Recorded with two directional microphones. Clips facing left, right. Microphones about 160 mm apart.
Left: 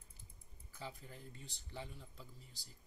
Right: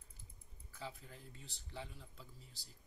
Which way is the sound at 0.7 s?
Centre (ahead or behind).